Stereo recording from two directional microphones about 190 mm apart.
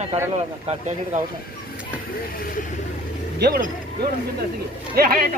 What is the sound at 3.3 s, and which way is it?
Speech, 55° right (ahead or behind).